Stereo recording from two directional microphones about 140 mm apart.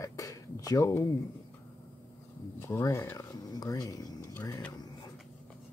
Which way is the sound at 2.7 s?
20° left (ahead or behind).